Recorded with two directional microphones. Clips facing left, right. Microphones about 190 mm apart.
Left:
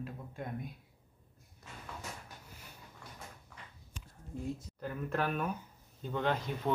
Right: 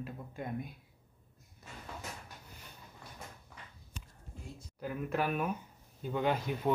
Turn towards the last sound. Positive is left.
turn(degrees=-10)  # may be behind; listen again after turning